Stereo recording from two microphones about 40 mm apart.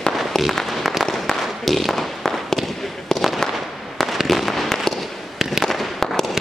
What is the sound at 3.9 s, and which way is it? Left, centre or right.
Fireworks, centre.